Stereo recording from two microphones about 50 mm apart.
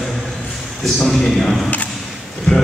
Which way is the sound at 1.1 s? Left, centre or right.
Centre.